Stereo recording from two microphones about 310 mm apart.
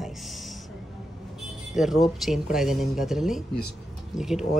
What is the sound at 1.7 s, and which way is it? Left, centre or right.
A woman's voice, centre.